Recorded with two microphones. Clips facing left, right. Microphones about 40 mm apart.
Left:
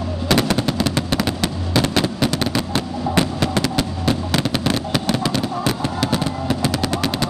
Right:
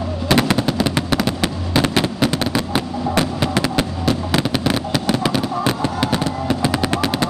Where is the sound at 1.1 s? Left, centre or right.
Centre.